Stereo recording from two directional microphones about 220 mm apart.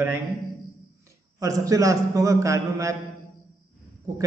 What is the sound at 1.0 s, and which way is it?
A man's voice, 15° right (ahead or behind).